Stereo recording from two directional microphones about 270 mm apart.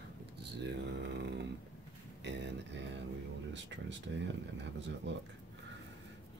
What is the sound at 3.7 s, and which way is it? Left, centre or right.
Speech, right.